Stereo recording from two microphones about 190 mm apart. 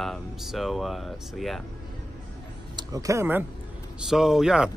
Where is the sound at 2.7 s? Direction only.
20° right (ahead or behind).